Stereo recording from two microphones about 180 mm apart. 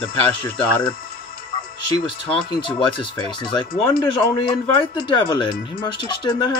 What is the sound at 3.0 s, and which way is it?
Speech, 25° left (ahead or behind).